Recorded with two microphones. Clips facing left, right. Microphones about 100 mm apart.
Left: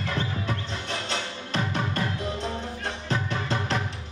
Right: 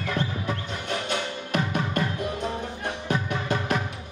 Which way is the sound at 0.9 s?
15° right (ahead or behind).